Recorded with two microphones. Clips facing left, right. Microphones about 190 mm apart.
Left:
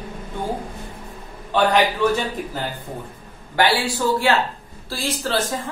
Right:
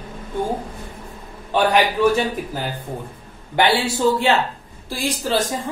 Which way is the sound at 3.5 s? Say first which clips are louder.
Right 1 dB; 20° right (ahead or behind).